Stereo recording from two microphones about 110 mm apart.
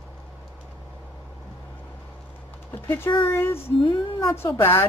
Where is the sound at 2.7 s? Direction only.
20° left (ahead or behind).